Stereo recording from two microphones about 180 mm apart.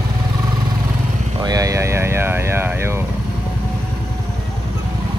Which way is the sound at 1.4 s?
20° right (ahead or behind).